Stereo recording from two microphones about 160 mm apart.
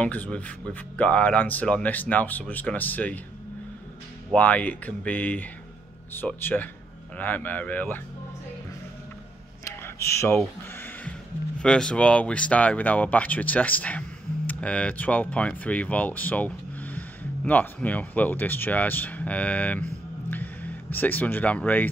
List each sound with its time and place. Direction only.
0.0 s speech: 10° left (ahead or behind)
4.3 s speech: 10° left (ahead or behind)
9.7 s a sound: 15° left (ahead or behind)
11.6 s speech: 5° left (ahead or behind)
20.9 s speech: 10° left (ahead or behind)